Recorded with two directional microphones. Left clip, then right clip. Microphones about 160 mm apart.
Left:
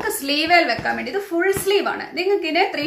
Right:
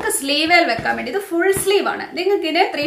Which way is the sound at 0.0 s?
Centre (ahead or behind).